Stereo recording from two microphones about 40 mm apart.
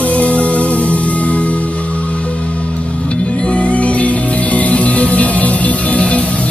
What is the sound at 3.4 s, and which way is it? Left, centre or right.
Music, left.